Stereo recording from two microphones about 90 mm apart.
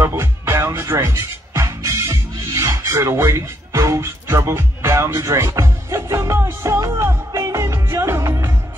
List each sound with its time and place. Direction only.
0.0 s music: 30° right (ahead or behind)